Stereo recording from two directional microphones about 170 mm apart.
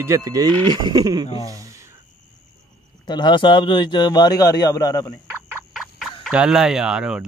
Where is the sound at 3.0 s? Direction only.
25° left (ahead or behind).